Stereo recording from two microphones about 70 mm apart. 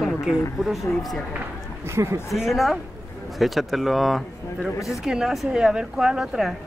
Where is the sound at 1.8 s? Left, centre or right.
Right.